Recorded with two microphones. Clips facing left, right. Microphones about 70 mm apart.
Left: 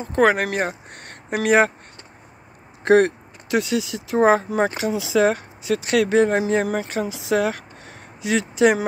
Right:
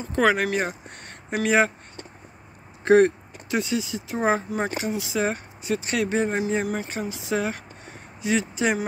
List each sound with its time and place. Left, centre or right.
0.0 s speech: left
2.8 s speech: left